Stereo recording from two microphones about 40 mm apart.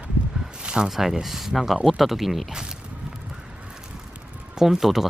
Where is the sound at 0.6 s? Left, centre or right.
Right.